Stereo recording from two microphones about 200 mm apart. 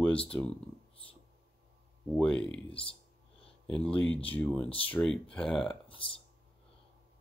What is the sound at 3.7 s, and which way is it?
Speech, 5° left (ahead or behind).